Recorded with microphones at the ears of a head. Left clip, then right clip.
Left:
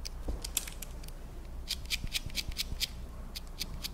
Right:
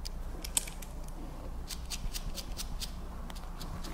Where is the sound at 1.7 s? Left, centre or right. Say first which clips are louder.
Left 8 dB; left.